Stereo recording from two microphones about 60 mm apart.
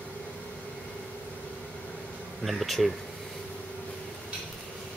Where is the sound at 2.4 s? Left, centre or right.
Centre.